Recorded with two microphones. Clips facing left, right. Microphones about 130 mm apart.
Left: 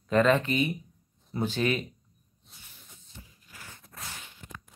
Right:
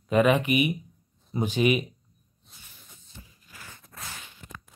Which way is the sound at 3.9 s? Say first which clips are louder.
Right 1 dB; 90° right.